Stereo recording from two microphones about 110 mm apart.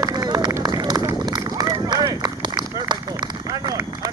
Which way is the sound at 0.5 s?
35° right (ahead or behind).